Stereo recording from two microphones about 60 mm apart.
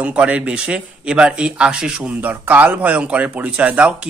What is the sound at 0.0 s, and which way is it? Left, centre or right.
Speech, centre.